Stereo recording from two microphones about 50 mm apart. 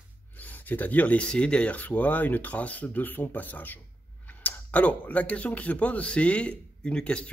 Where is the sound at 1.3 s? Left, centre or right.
Centre.